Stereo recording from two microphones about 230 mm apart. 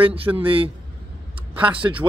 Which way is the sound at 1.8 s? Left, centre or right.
Right.